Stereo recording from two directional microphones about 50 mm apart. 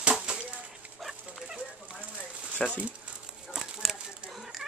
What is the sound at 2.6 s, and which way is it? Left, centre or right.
Speech, centre.